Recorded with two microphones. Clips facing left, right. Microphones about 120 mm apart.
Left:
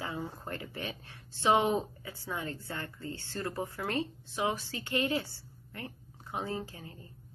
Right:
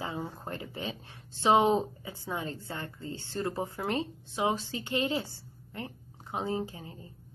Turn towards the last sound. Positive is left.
turn(degrees=-20)  # may be behind; listen again after turning